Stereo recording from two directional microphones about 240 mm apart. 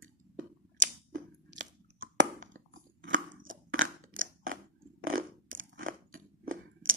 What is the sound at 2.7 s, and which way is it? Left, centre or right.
Crunch, right.